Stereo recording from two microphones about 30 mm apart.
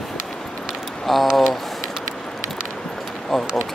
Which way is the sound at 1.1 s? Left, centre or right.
Centre.